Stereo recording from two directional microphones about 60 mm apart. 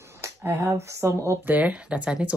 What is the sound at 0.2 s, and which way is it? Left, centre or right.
Speech, right.